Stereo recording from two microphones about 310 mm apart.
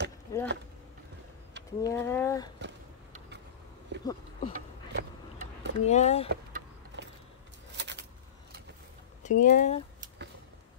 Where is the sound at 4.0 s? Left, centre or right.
Centre.